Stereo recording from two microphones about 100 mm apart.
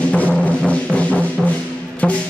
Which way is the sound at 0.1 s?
10° left (ahead or behind).